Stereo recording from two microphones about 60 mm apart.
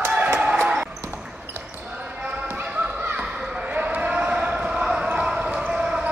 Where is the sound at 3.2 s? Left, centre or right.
Centre.